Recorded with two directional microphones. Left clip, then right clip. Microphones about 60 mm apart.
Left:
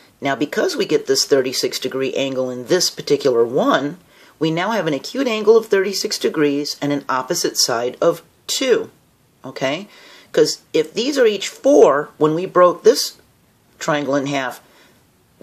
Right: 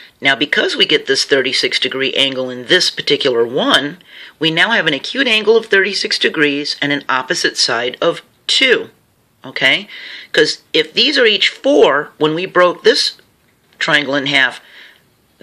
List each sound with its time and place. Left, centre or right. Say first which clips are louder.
0.2 s speech: right 6 dB; left
2.3 s speech: right 1 dB; right
2.6 s speech: right 8 dB; left
3.4 s speech: right 3 dB; right
4.1 s speech: right 5 dB; left
14.2 s speech: right 9 dB; left